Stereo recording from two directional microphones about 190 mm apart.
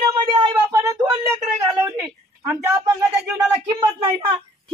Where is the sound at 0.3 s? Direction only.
25° right (ahead or behind).